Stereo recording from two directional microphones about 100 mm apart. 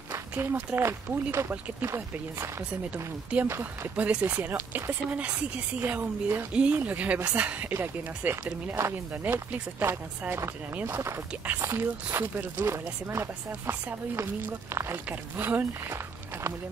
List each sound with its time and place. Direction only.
0.4 s a woman's voice: 20° right (ahead or behind)
3.4 s speech: 25° right (ahead or behind)
3.9 s a woman's voice: 15° right (ahead or behind)